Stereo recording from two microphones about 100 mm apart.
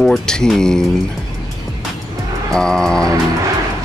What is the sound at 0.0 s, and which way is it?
Speech, 5° left (ahead or behind).